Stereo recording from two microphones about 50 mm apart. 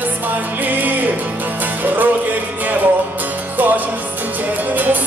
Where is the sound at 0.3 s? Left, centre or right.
Right.